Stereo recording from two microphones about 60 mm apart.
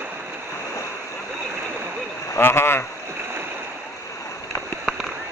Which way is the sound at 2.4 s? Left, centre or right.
Left.